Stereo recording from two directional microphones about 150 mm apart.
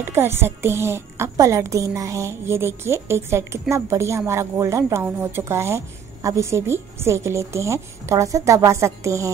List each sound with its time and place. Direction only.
0.0 s a woman's voice: 15° right (ahead or behind)